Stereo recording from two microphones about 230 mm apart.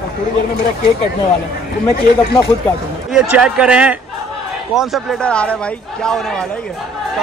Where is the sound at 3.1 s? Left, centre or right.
Centre.